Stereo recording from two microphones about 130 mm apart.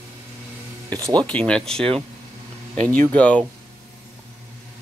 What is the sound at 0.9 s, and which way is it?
Speech, 30° right (ahead or behind).